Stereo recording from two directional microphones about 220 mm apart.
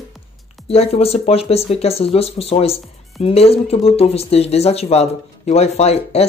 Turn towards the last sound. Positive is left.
turn(degrees=30)  # may be behind; listen again after turning